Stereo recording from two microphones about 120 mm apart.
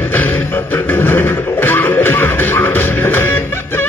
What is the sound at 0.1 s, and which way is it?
Music, 15° left (ahead or behind).